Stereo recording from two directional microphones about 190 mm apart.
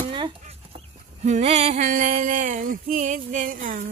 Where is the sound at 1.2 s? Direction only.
35° right (ahead or behind).